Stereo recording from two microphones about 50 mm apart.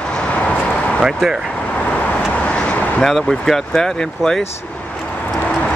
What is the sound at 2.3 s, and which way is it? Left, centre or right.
Vehicle, left.